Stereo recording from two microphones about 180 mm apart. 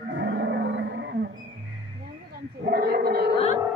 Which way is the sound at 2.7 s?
60° right (ahead or behind).